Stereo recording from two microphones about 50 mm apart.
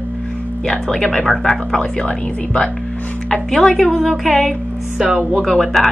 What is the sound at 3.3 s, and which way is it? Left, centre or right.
A woman's voice, centre.